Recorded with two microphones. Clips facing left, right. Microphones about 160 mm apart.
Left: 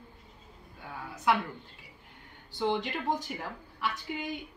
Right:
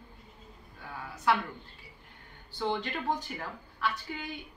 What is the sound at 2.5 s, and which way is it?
Speech, 15° left (ahead or behind).